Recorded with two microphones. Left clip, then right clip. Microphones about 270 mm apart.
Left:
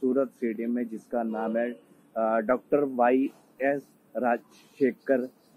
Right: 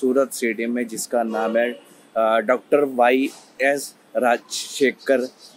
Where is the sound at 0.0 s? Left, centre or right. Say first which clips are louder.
Right 7 dB; right.